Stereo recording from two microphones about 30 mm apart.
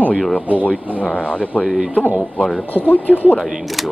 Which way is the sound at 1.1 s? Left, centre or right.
Left.